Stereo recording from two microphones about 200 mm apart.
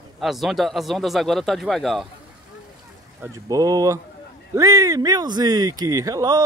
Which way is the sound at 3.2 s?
15° right (ahead or behind).